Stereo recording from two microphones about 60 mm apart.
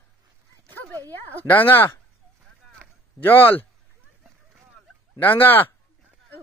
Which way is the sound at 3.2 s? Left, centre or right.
Left.